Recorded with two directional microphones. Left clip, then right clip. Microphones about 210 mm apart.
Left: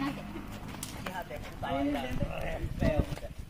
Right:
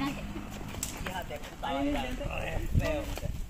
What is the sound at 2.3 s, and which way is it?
Clip-clop, 25° right (ahead or behind).